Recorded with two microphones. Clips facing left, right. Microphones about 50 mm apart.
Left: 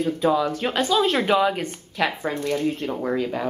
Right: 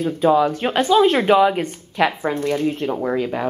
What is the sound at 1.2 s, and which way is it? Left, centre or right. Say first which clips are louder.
Speech: right 5 dB; centre.